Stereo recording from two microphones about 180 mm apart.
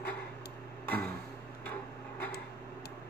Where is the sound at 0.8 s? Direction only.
10° left (ahead or behind).